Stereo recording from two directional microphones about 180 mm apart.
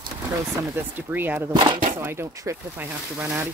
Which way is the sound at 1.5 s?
25° right (ahead or behind).